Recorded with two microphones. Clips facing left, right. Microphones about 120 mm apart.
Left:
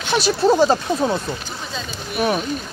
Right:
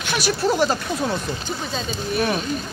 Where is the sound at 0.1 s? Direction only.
25° left (ahead or behind).